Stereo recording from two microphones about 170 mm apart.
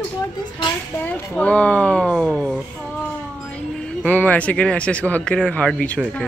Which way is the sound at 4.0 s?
10° left (ahead or behind).